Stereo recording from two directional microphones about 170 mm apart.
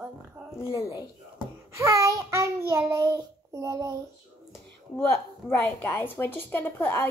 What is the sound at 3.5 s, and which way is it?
Speech, 20° right (ahead or behind).